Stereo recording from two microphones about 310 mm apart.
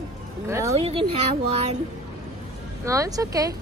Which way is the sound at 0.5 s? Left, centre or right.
Centre.